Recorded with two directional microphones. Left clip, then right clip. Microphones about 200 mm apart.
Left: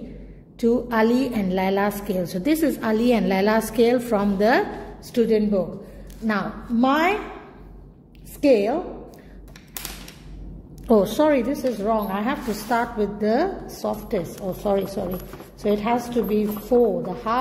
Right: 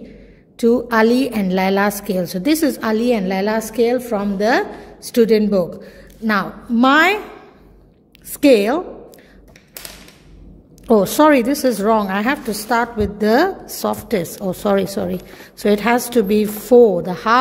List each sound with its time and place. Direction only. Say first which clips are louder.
0.6 s a woman's voice: right 6 dB; 30° right (ahead or behind)
5.1 s a woman's voice: right 6 dB; 45° right (ahead or behind)
6.2 s a woman's voice: right 6 dB; 35° right (ahead or behind)
8.4 s a woman's voice: right 5 dB; 35° right (ahead or behind)
11.1 s a woman's voice: right 7 dB; 35° right (ahead or behind)